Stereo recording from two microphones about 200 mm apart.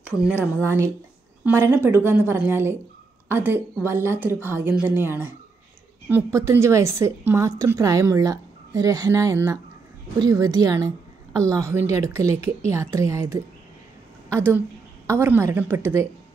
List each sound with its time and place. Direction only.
0.0 s a woman's voice: 5° right (ahead or behind)